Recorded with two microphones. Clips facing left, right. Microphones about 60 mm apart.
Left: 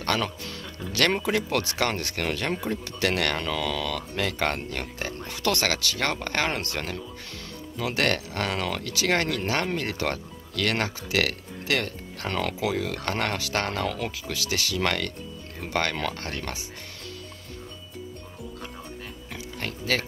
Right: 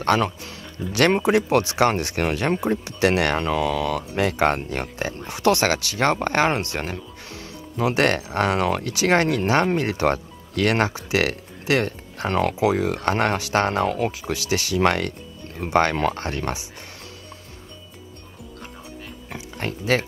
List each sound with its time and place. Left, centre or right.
0.0 s speech: right
19.3 s pig: right